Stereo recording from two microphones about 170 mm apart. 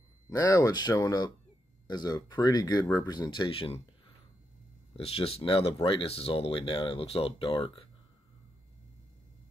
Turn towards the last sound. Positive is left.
turn(degrees=35)  # may be behind; listen again after turning